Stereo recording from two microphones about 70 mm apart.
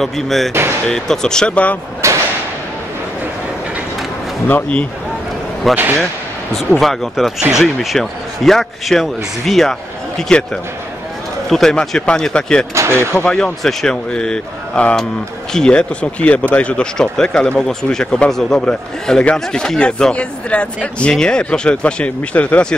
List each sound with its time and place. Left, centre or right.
0.0 s speech: centre
0.5 s speech: right
0.8 s speech: centre
2.0 s whip: right
4.5 s speech: left
5.7 s speech: centre
12.7 s speech: right
13.1 s speech: centre